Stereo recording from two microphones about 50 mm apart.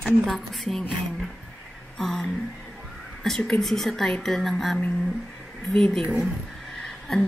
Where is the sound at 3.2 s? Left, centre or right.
Centre.